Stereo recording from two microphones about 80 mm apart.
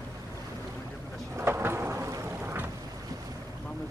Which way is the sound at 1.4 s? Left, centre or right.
Right.